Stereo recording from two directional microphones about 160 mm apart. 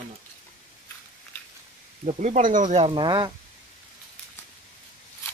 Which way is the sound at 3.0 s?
25° right (ahead or behind).